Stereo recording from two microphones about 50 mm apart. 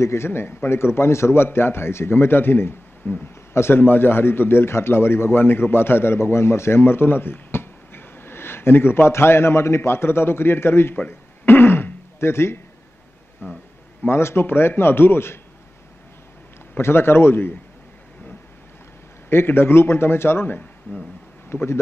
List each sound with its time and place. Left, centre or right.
0.0 s a man's voice: left
11.1 s throat clearing: left
13.4 s a man's voice: left
16.7 s a man's voice: left
19.2 s a man's voice: left